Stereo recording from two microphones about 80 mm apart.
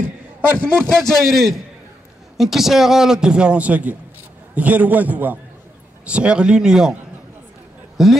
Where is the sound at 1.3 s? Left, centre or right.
Centre.